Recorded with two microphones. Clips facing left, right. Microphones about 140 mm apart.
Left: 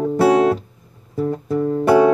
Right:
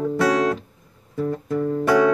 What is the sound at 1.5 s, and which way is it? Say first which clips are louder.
Music: left 4 dB; 30° left (ahead or behind).